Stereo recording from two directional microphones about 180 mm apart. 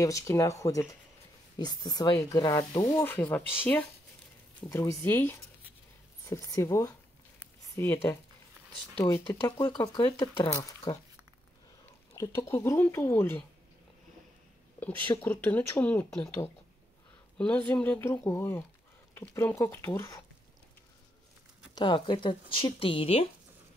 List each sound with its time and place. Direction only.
0.0 s speech: 15° left (ahead or behind)
12.2 s speech: 20° left (ahead or behind)
14.8 s speech: 10° left (ahead or behind)
17.4 s speech: 5° left (ahead or behind)
21.7 s speech: 25° left (ahead or behind)